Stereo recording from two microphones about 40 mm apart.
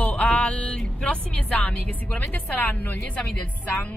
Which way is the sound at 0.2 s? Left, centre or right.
Left.